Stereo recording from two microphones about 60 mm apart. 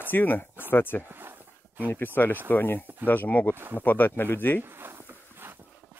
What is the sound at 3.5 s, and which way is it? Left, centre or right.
Speech, right.